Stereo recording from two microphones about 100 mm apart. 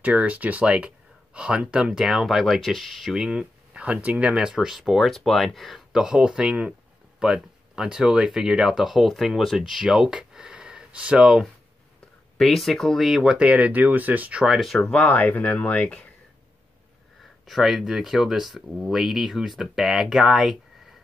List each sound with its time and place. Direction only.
0.0 s speech: 15° right (ahead or behind)
14.4 s speech: centre (ahead or behind)
15.0 s speech: 15° left (ahead or behind)
17.5 s speech: centre (ahead or behind)